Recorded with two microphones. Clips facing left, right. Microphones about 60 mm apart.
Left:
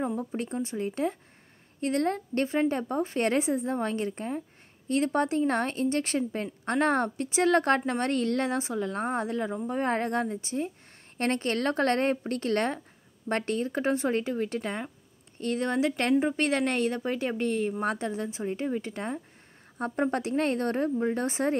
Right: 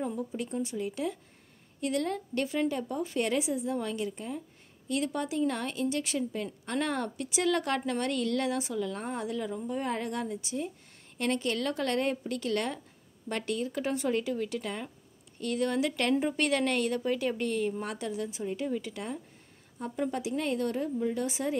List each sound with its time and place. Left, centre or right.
0.0 s a woman's voice: left
19.8 s speech: left